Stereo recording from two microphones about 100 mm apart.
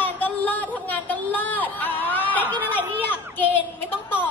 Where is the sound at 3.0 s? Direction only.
20° left (ahead or behind).